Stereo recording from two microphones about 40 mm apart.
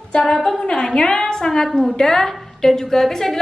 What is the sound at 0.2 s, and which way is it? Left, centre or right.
A woman's voice, centre.